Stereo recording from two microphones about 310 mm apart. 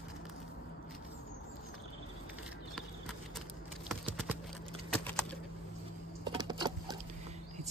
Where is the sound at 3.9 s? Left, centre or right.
Centre.